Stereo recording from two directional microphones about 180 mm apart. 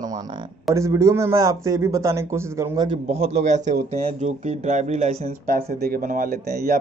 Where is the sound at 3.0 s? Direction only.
35° right (ahead or behind).